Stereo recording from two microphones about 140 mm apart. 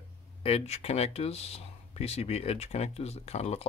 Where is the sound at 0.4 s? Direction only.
45° left (ahead or behind).